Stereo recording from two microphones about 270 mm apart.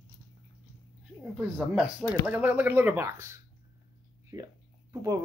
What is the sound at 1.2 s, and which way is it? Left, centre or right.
Speech, centre.